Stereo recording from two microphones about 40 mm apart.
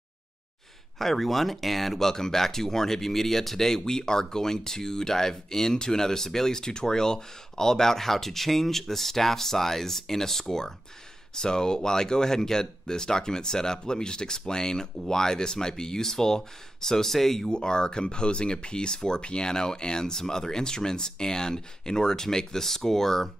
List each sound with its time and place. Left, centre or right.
0.9 s speech: centre
17.5 s speech: centre